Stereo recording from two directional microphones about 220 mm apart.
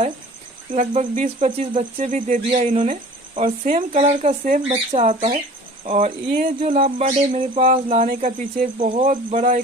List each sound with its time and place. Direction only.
0.7 s speech: 30° right (ahead or behind)